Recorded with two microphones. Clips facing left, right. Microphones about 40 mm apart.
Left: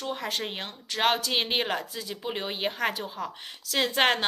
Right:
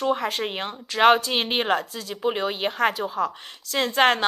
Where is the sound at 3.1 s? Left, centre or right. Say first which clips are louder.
Right 9 dB; right.